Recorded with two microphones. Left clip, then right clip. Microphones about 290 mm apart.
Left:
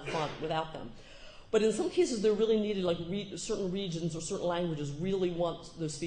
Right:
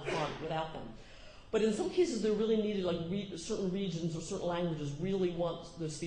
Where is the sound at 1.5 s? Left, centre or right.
Left.